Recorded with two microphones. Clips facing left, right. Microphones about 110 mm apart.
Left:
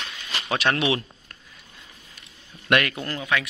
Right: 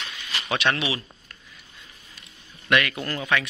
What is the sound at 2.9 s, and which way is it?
Speech, 15° left (ahead or behind).